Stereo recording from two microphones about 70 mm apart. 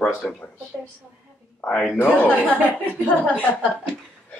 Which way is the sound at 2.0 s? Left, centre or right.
Left.